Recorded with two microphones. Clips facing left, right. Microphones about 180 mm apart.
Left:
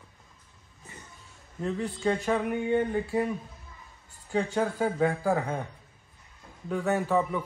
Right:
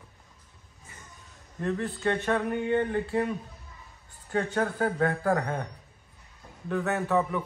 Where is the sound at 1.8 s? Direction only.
10° left (ahead or behind).